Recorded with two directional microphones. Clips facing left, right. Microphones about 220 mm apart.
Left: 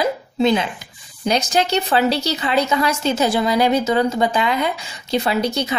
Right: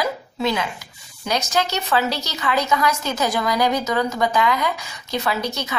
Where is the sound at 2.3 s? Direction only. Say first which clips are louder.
Left 3 dB; 30° left (ahead or behind).